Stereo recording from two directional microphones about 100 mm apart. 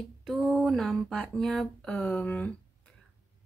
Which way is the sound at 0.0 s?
Centre (ahead or behind).